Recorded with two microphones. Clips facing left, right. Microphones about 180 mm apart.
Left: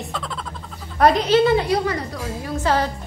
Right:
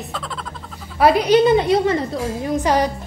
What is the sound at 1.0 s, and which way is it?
A woman's voice, 10° right (ahead or behind).